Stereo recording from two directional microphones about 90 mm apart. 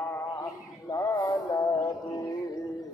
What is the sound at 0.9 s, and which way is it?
Music, 40° left (ahead or behind).